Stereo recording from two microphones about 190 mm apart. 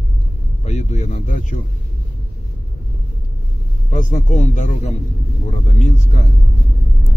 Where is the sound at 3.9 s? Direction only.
40° left (ahead or behind).